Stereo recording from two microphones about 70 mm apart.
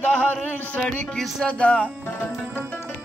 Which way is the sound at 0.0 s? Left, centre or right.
Left.